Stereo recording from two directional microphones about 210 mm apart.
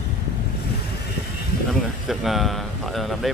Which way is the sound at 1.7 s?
Centre (ahead or behind).